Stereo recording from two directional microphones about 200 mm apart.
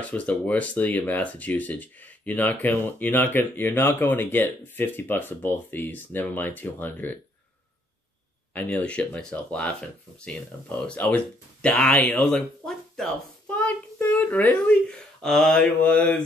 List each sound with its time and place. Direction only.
0.0 s speech: 5° left (ahead or behind)
8.5 s speech: 5° left (ahead or behind)